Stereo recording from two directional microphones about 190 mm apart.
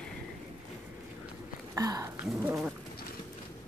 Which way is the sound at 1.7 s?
15° right (ahead or behind).